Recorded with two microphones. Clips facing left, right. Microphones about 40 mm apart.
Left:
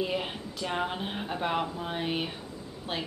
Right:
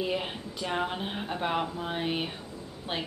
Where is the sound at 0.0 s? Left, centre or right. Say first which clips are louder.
Even; centre.